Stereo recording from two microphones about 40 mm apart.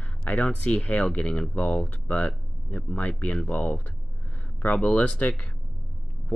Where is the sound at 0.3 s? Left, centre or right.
Left.